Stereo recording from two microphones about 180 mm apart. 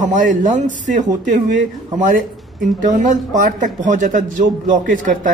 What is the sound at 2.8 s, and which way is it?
A man's voice, 45° right (ahead or behind).